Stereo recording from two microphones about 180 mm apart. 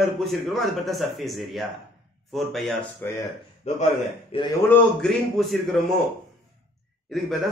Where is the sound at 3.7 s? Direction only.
40° left (ahead or behind).